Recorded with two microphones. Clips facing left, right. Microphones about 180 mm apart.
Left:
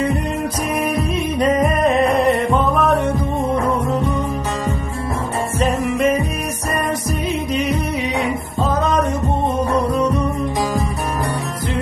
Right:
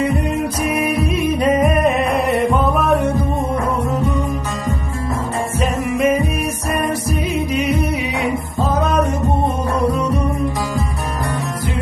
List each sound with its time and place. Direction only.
1.4 s music: 5° right (ahead or behind)
5.6 s music: centre (ahead or behind)
8.5 s music: 10° right (ahead or behind)